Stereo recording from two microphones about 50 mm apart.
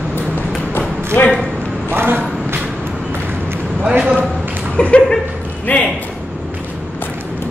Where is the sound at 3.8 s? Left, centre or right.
Centre.